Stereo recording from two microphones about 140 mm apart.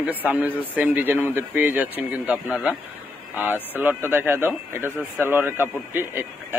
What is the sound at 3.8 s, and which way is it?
Speech, 15° right (ahead or behind).